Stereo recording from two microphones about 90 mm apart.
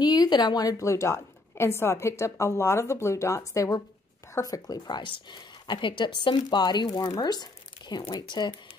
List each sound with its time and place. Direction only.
0.0 s a woman's voice: 45° left (ahead or behind)